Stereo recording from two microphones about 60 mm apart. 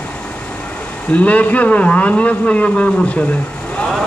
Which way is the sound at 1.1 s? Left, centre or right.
Left.